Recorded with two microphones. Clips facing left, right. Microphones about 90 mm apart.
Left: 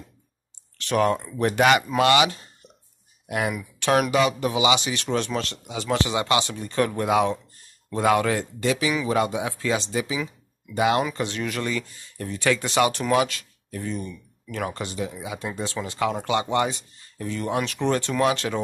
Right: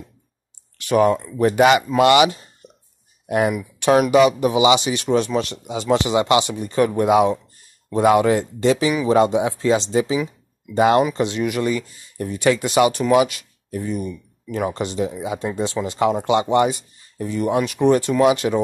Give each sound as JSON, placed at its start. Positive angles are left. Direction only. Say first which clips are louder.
{"t": 0.7, "sound": "speech", "louder": "right 5 dB", "side_deg": -10}
{"t": 2.0, "sound": "speech", "louder": "right 5 dB", "side_deg": -20}
{"t": 3.3, "sound": "speech", "louder": "right 7 dB", "side_deg": -30}
{"t": 3.5, "sound": "speech", "louder": "right 3 dB", "side_deg": -15}
{"t": 8.6, "sound": "speech", "louder": "right 6 dB", "side_deg": -30}
{"t": 11.1, "sound": "speech", "louder": "right 7 dB", "side_deg": -15}